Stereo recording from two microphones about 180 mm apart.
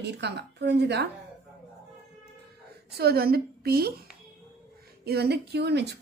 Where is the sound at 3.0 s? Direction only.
60° right (ahead or behind).